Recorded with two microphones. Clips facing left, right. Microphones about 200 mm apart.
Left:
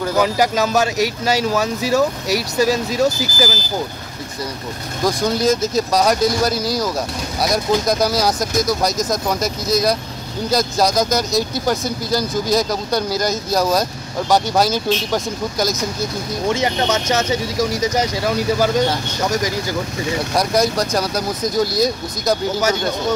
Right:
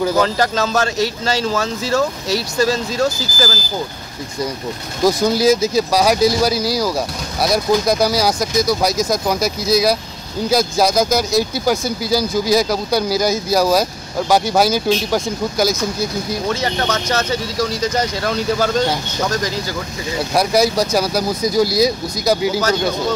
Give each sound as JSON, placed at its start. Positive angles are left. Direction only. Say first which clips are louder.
{"t": 0.2, "sound": "a man's voice", "louder": "even", "side_deg": 15}
{"t": 5.0, "sound": "speech", "louder": "right 3 dB", "side_deg": -5}
{"t": 16.4, "sound": "a man's voice", "louder": "left 4 dB", "side_deg": 20}
{"t": 20.3, "sound": "speech", "louder": "right 3 dB", "side_deg": -5}